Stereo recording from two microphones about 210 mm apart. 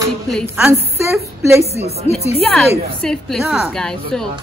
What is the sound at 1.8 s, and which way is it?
Speech, 30° right (ahead or behind).